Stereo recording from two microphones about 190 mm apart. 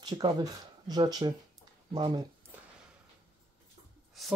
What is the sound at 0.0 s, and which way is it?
Speech, 25° right (ahead or behind).